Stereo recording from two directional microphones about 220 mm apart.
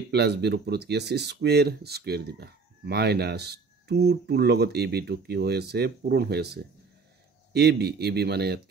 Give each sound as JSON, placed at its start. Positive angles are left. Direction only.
{"t": 0.1, "sound": "speech", "side_deg": -50}